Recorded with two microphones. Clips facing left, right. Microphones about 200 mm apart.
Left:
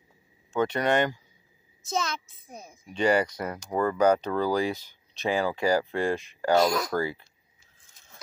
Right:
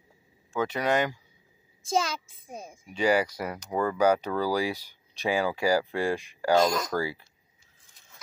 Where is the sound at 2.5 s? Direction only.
30° right (ahead or behind).